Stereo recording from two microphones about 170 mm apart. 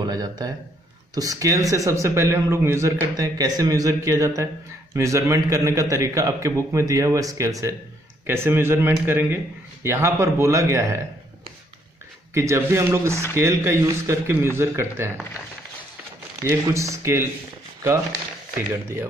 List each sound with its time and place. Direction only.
0.0 s speech: 25° right (ahead or behind)
12.4 s speech: 15° right (ahead or behind)
16.4 s speech: 15° right (ahead or behind)